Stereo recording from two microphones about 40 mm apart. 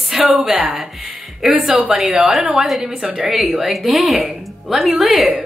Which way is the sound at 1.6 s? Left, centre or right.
Right.